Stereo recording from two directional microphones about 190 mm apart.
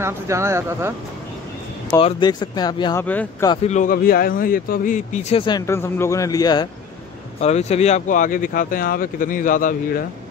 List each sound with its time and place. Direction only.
0.0 s speech: 15° right (ahead or behind)
2.0 s speech: 25° left (ahead or behind)
3.0 s a man's voice: 10° left (ahead or behind)
3.6 s speech: 40° left (ahead or behind)
5.7 s a man's voice: 15° left (ahead or behind)
7.3 s speech: 35° left (ahead or behind)